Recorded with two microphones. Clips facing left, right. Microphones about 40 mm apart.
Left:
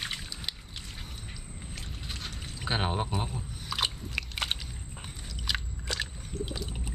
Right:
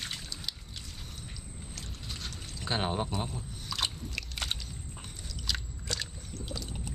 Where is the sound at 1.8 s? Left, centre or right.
Centre.